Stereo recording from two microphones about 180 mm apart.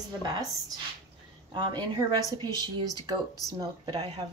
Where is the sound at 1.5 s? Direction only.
25° right (ahead or behind).